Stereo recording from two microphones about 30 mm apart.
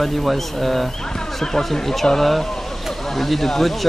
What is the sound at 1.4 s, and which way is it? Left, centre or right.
Speech, centre.